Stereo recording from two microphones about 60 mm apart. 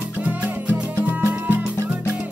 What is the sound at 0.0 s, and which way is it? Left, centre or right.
Music, right.